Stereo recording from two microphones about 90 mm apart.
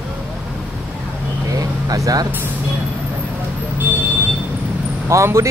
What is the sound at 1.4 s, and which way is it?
Vehicle, 40° right (ahead or behind).